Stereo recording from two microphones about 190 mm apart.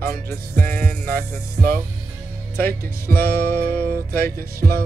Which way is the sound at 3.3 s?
50° right (ahead or behind).